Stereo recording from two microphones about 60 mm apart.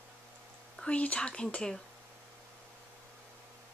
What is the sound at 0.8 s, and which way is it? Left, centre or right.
Speech, left.